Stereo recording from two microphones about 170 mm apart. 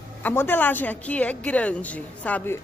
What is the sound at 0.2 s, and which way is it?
Speech, 10° left (ahead or behind).